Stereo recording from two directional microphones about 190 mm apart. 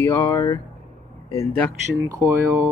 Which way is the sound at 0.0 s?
15° left (ahead or behind).